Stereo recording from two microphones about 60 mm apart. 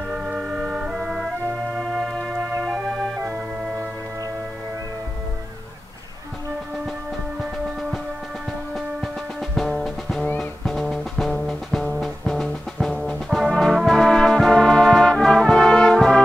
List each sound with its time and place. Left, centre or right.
0.1 s organ: centre
1.8 s music: centre
2.6 s organ: centre
9.6 s music: centre
11.4 s brass instrument: centre
13.5 s brass instrument: centre